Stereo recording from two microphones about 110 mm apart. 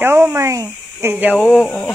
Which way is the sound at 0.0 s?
20° right (ahead or behind).